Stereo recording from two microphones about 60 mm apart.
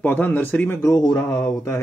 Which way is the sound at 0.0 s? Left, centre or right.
Left.